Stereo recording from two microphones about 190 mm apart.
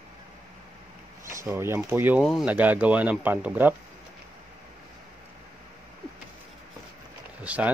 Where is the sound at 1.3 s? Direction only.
15° right (ahead or behind).